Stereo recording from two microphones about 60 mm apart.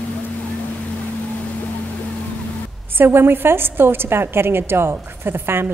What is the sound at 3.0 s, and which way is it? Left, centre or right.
A woman's voice, right.